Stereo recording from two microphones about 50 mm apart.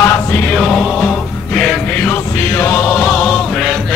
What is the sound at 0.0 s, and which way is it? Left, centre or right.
Music, left.